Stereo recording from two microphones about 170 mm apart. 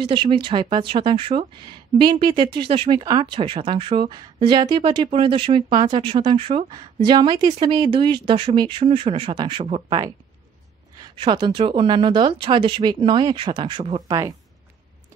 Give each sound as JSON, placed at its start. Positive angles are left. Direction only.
{"t": 0.0, "sound": "speech", "side_deg": -30}
{"t": 9.8, "sound": "speech", "side_deg": -20}
{"t": 14.0, "sound": "speech", "side_deg": -20}